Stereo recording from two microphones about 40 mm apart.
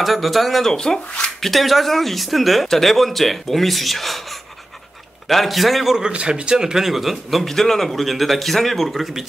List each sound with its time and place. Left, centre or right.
0.0 s a man's voice: centre
0.7 s speech: centre
1.4 s a man's voice: centre
6.1 s a man's voice: right; by 9.2 s centre